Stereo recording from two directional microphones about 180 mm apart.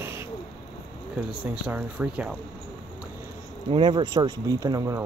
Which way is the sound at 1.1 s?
10° right (ahead or behind).